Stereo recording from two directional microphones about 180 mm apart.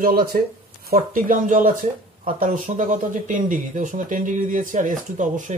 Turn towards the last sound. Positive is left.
turn(degrees=-45)  # may be behind; listen again after turning